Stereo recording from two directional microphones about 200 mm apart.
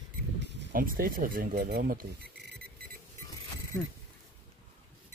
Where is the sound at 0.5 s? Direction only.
60° right (ahead or behind).